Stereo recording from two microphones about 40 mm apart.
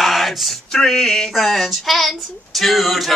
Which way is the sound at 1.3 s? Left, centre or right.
Centre.